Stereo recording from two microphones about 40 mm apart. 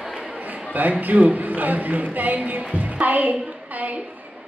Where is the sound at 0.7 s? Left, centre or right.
Right.